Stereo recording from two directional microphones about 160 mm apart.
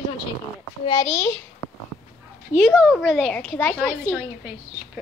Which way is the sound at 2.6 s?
5° left (ahead or behind).